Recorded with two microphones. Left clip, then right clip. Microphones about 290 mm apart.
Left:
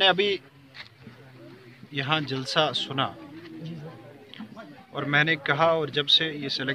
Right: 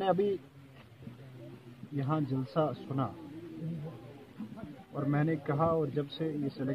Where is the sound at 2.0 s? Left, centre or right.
Left.